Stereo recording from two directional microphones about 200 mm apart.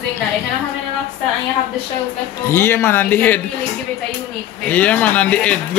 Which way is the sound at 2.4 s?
10° left (ahead or behind).